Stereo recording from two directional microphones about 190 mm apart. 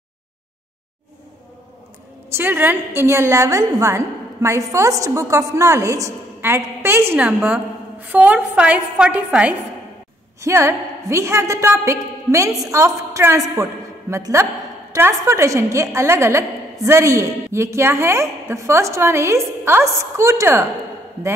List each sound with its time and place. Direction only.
2.3 s a woman's voice: 10° right (ahead or behind)